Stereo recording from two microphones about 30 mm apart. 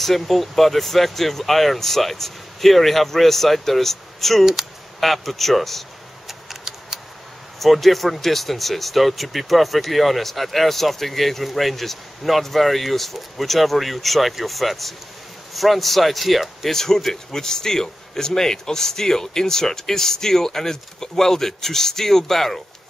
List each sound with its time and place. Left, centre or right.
0.0 s speech: centre
6.7 s a sound: centre
7.5 s speech: centre
16.7 s speech: centre